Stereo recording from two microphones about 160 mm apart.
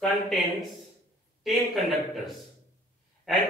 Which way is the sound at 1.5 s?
Centre (ahead or behind).